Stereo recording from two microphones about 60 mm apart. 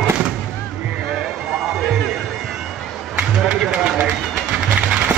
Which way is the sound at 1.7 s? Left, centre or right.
Centre.